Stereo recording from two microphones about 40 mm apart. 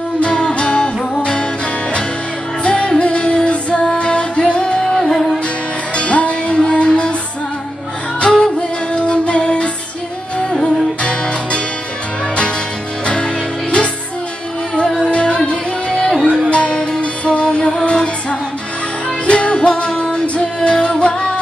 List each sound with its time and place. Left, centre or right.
0.2 s music: left
2.6 s music: left
4.9 s music: centre
5.9 s music: left
8.5 s music: left
13.0 s music: left
15.0 s music: left
15.9 s music: centre
16.4 s music: left
19.2 s music: left